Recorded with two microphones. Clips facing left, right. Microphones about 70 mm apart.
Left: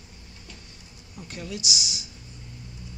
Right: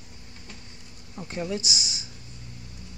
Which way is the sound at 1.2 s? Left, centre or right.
Right.